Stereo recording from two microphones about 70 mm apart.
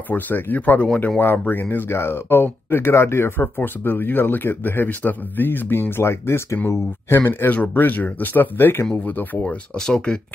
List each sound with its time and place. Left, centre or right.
0.1 s speech: left
9.8 s speech: centre